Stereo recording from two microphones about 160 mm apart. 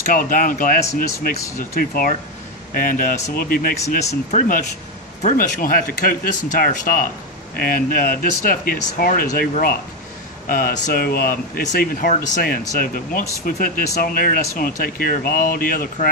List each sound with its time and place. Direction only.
0.0 s speech: 60° left (ahead or behind)
4.3 s speech: 50° left (ahead or behind)